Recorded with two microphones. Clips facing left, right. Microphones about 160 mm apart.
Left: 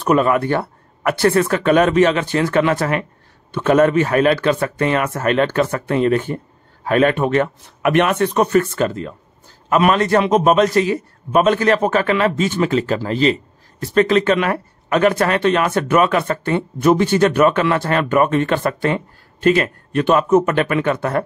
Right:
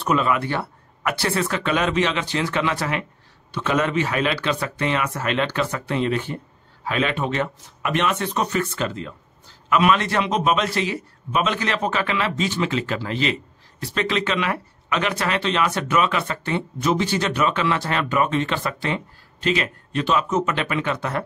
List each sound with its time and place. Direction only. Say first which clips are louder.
0.0 s a man's voice: left 6 dB; 50° left (ahead or behind)